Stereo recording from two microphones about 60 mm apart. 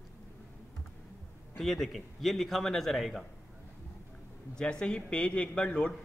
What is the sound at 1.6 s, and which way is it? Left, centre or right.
A man's voice, centre.